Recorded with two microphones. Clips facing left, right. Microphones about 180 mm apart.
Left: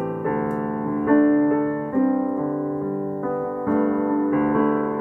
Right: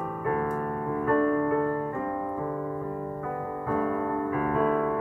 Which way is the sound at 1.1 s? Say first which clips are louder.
Left 9 dB; 55° left (ahead or behind).